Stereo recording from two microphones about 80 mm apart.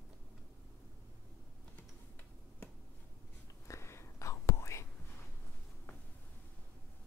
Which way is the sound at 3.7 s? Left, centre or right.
Left.